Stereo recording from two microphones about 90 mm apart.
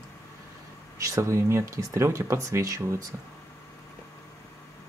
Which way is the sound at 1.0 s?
35° right (ahead or behind).